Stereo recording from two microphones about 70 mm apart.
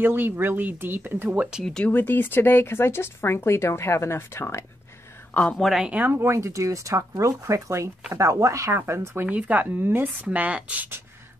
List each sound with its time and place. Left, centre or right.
0.0 s speech: right
1.6 s speech: centre
1.9 s speech: left
5.3 s a woman's voice: centre
5.6 s speech: centre
5.9 s speech: right
6.1 s speech: right
9.2 s speech: right
10.2 s speech: centre